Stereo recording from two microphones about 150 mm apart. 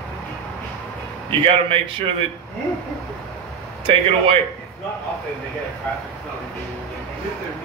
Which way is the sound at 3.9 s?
40° right (ahead or behind).